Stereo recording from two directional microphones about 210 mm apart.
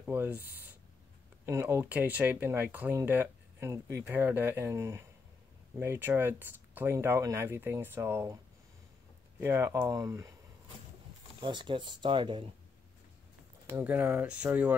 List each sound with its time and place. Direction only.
0.0 s speech: 10° right (ahead or behind)
9.4 s speech: 10° right (ahead or behind)
11.4 s speech: 20° right (ahead or behind)
13.7 s speech: 10° right (ahead or behind)